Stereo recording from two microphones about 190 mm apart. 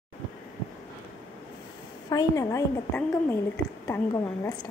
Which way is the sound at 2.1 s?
15° left (ahead or behind).